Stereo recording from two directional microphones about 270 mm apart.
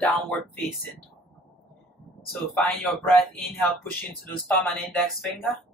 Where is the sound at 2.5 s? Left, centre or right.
Centre.